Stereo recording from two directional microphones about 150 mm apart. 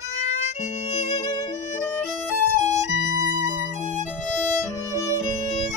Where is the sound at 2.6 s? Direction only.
20° right (ahead or behind).